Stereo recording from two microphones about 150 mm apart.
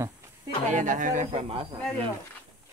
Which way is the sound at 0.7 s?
55° right (ahead or behind).